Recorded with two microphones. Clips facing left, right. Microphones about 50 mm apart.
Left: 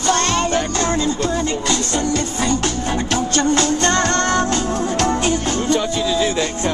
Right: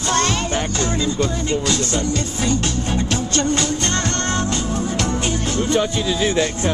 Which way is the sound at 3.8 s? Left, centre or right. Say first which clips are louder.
Left 5 dB; left.